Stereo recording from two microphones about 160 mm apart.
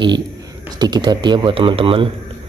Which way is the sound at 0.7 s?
25° right (ahead or behind).